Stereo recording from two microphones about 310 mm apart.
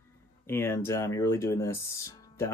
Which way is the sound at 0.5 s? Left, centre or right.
Centre.